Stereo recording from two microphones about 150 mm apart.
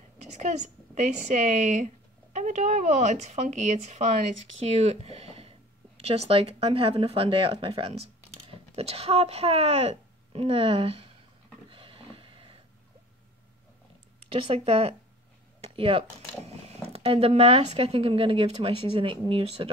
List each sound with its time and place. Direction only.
0.4 s speech: 50° right (ahead or behind)
11.7 s a sound: 35° right (ahead or behind)
14.3 s speech: 40° right (ahead or behind)